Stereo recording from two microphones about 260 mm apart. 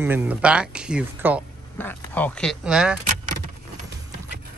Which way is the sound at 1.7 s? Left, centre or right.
Centre.